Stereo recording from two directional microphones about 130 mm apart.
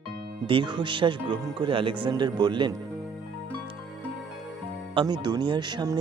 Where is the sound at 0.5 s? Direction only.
40° right (ahead or behind).